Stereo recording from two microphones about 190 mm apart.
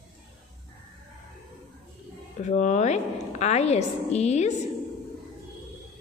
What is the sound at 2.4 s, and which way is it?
A woman's voice, 40° left (ahead or behind).